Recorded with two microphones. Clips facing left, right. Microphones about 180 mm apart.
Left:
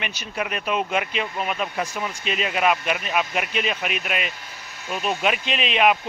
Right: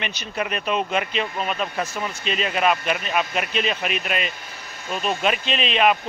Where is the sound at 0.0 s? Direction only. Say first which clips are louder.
Right 1 dB; 10° left (ahead or behind).